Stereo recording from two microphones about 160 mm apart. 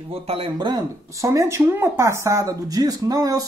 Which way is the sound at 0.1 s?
40° right (ahead or behind).